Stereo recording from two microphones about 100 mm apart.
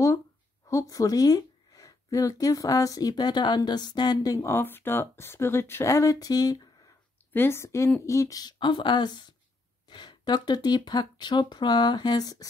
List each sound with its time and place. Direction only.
0.7 s speech: 35° left (ahead or behind)
7.3 s a woman's voice: 25° left (ahead or behind)